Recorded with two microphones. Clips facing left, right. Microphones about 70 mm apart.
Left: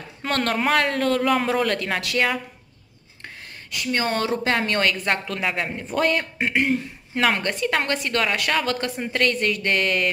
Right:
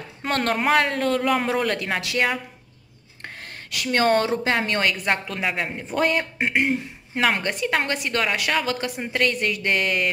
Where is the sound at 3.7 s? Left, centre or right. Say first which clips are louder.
Right 4 dB; right.